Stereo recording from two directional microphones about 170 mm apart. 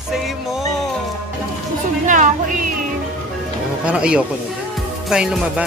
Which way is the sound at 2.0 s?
50° right (ahead or behind).